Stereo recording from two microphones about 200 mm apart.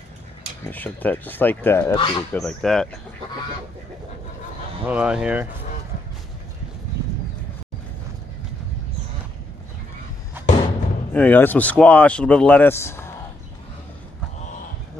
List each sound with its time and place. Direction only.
0.7 s speech: 10° left (ahead or behind)
2.0 s speech: 25° left (ahead or behind)
2.4 s speech: centre (ahead or behind)
4.8 s speech: 5° right (ahead or behind)
10.4 s a sound: 10° right (ahead or behind)
11.1 s speech: 10° left (ahead or behind)